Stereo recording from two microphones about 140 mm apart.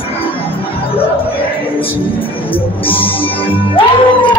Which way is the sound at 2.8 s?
40° left (ahead or behind).